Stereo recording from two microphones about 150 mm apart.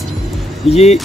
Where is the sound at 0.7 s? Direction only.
45° left (ahead or behind).